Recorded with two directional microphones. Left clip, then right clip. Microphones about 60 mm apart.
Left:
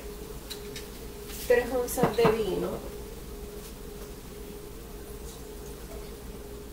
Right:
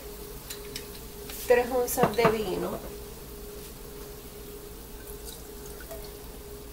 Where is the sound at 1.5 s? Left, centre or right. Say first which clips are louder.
Right 2 dB; right.